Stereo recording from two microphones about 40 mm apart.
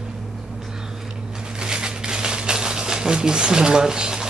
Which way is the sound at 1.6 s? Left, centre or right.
Centre.